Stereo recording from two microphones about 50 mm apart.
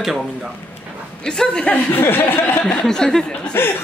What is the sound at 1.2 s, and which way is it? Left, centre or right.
Speech, centre.